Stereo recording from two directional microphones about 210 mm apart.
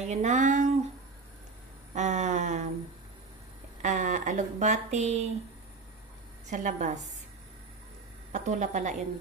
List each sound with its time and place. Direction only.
0.0 s speech: 35° right (ahead or behind)
2.0 s speech: 35° right (ahead or behind)
3.8 s speech: 35° right (ahead or behind)
6.5 s speech: 35° right (ahead or behind)
8.3 s speech: 35° right (ahead or behind)